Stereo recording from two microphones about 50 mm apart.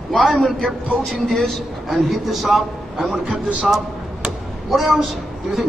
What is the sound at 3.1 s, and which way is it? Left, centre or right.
Speech, right.